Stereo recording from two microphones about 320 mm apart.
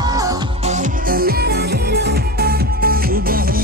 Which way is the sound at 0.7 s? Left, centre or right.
Right.